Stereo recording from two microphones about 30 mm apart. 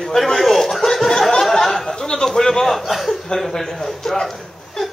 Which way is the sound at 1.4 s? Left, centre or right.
Centre.